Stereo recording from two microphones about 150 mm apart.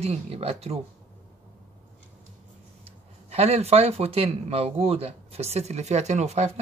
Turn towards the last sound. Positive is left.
turn(degrees=-50)  # may be behind; listen again after turning